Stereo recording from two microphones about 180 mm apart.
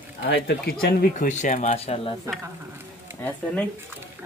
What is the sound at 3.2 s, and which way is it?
Speech, 10° left (ahead or behind).